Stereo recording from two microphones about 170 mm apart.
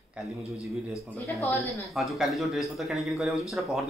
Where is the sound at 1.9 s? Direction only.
Centre (ahead or behind).